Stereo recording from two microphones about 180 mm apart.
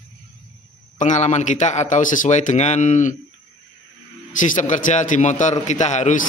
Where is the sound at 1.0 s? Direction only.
40° left (ahead or behind).